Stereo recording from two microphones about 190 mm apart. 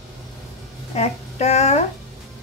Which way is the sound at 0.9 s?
35° left (ahead or behind).